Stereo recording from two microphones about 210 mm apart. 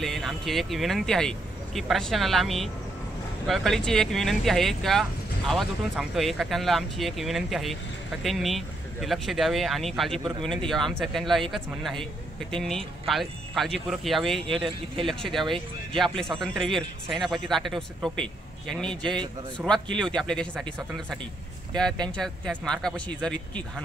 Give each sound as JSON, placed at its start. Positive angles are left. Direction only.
{"t": 0.0, "sound": "speech", "side_deg": 0}
{"t": 14.5, "sound": "speech", "side_deg": -25}
{"t": 15.3, "sound": "speech", "side_deg": 0}
{"t": 22.1, "sound": "speech", "side_deg": 5}